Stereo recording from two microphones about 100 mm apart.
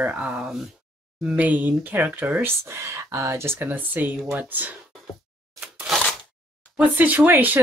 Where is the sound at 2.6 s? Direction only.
30° right (ahead or behind).